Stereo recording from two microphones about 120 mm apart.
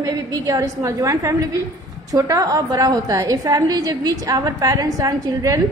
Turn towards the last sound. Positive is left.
turn(degrees=-30)  # may be behind; listen again after turning